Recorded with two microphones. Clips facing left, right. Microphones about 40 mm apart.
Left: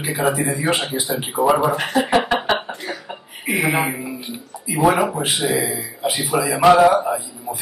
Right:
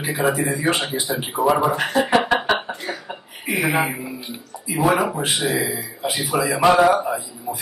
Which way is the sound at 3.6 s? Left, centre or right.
Centre.